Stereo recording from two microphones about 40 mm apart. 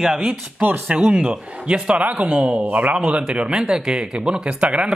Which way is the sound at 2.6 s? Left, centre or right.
Right.